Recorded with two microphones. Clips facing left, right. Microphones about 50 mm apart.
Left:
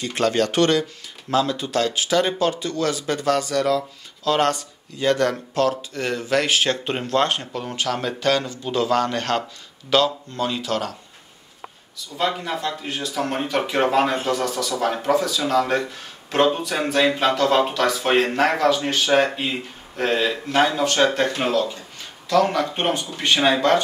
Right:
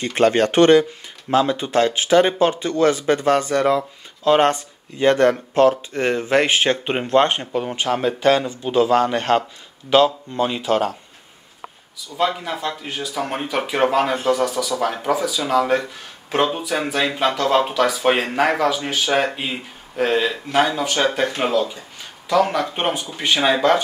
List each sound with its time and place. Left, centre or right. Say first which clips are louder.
0.0 s speech: right 4 dB; right
12.2 s speech: right 2 dB; centre